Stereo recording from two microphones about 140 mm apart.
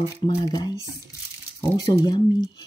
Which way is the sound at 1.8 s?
35° left (ahead or behind).